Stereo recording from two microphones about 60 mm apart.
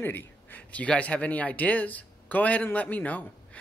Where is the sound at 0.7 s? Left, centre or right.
Left.